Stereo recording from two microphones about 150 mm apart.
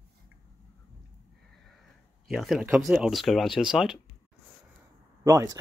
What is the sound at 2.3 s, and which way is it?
Speech, centre (ahead or behind).